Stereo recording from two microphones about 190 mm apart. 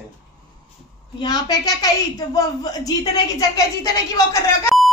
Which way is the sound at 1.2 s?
20° left (ahead or behind).